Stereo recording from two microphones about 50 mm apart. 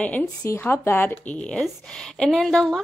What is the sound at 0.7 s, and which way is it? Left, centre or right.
Speech, left.